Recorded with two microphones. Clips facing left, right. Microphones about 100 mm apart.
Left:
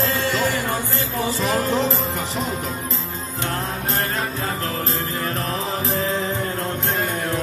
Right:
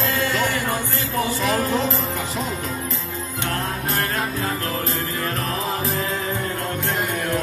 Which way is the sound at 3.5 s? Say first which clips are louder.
Even; 30° left (ahead or behind).